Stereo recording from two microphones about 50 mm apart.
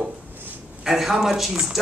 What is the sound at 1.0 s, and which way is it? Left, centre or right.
Speech, centre.